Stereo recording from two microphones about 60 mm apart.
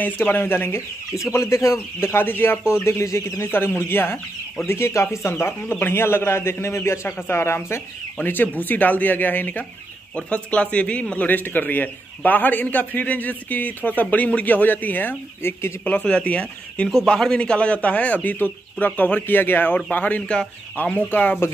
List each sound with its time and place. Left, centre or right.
0.0 s speech: left
1.1 s speech: left
2.7 s speech: left
8.2 s a man's voice: left
15.8 s a man's voice: left
20.8 s a man's voice: left